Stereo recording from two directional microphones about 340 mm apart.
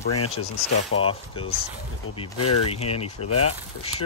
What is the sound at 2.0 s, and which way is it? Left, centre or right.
Speech, left.